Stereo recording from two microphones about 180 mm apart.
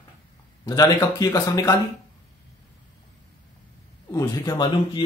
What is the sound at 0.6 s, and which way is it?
Speech, 20° left (ahead or behind).